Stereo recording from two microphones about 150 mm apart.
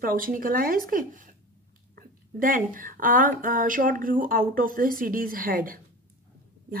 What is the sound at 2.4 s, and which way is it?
Speech, 65° right (ahead or behind).